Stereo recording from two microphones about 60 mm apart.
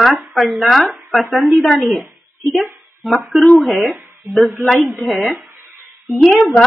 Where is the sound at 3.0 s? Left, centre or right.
Centre.